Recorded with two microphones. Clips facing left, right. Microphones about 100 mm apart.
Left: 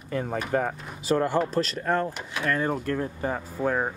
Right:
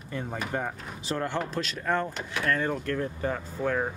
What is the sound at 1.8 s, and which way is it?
Speech, 10° left (ahead or behind).